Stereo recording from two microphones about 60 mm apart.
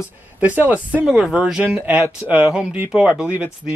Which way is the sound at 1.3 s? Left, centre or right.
Centre.